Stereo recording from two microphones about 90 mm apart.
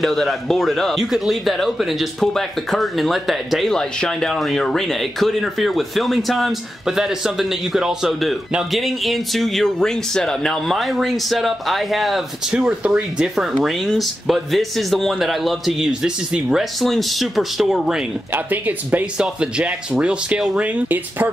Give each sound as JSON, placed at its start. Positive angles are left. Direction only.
{"t": 0.0, "sound": "speech", "side_deg": 0}
{"t": 18.3, "sound": "speech", "side_deg": -20}
{"t": 20.6, "sound": "speech", "side_deg": -20}